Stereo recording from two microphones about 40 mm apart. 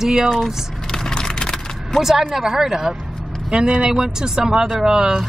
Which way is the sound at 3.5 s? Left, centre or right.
Right.